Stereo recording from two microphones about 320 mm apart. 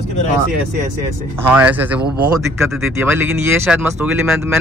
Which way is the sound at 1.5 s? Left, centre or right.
Centre.